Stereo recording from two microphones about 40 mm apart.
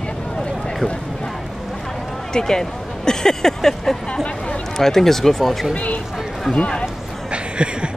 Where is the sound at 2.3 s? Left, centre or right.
Centre.